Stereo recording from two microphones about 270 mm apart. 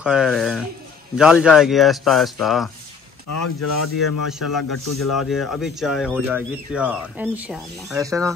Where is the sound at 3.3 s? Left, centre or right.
Left.